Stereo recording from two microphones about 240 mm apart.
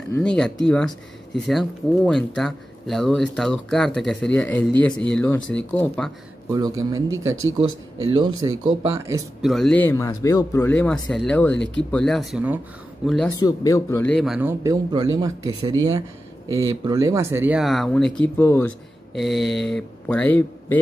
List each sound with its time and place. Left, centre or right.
0.1 s speech: centre
6.5 s speech: centre
8.1 s speech: centre
9.4 s a man's voice: centre
11.5 s speech: left
11.9 s speech: centre
13.4 s a man's voice: centre
14.6 s speech: centre